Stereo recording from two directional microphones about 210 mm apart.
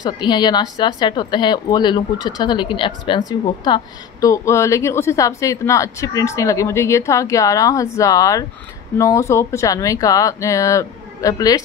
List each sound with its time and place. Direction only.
0.0 s speech: 20° left (ahead or behind)